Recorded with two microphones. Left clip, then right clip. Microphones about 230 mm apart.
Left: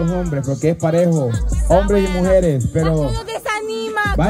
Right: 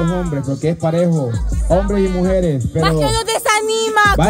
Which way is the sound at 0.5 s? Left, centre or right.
Left.